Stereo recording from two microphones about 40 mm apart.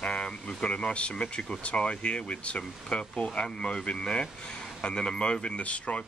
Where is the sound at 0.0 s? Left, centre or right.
Left.